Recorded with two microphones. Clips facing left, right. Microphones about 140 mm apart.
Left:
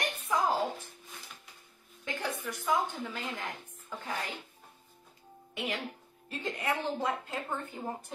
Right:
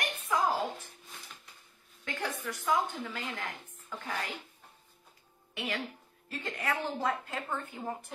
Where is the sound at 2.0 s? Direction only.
20° left (ahead or behind).